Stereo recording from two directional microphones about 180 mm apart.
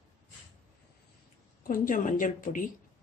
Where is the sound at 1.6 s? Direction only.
50° left (ahead or behind).